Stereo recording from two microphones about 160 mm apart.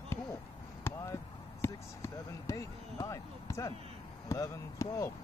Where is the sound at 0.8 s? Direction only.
15° left (ahead or behind).